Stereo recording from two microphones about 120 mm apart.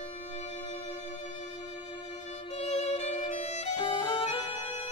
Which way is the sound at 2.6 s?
65° left (ahead or behind).